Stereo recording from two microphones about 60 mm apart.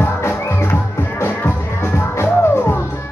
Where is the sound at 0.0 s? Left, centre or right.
Left.